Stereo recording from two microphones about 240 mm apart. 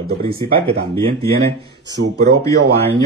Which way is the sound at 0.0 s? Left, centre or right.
Right.